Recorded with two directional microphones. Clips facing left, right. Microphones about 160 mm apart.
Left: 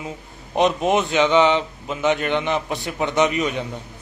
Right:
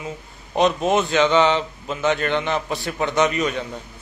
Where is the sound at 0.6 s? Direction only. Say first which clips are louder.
Even; 20° left (ahead or behind).